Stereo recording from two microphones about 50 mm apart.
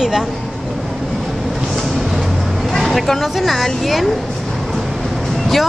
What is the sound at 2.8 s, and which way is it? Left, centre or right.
Speech, centre.